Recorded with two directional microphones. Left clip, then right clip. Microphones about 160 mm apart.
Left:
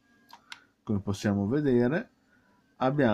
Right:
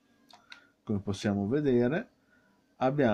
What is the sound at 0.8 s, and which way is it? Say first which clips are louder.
Speech: left 2 dB; 10° left (ahead or behind).